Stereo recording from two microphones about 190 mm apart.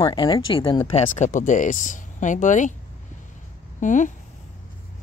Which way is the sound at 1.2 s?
40° left (ahead or behind).